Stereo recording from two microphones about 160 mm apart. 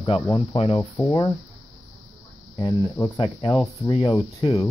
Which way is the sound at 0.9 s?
20° left (ahead or behind).